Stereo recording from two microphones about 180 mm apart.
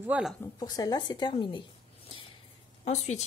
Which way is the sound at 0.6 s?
20° left (ahead or behind).